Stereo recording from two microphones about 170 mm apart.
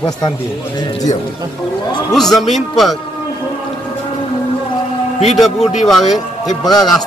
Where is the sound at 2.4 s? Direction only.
Centre (ahead or behind).